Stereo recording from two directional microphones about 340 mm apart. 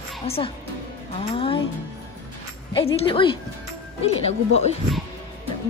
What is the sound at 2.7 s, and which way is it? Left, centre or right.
A woman's voice, centre.